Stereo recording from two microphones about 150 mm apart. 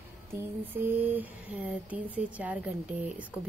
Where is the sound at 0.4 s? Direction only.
15° right (ahead or behind).